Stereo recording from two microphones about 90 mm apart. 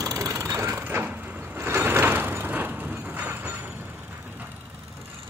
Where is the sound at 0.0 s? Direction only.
35° right (ahead or behind); by 4.5 s 20° right (ahead or behind).